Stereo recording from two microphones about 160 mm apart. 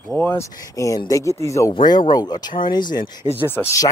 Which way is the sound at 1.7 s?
30° left (ahead or behind).